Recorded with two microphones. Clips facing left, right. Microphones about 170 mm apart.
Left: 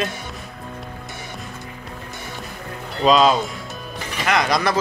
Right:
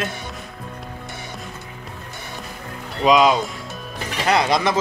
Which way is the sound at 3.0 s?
15° right (ahead or behind).